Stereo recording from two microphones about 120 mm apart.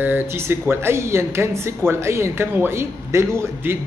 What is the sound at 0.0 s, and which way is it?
Speech, 20° right (ahead or behind).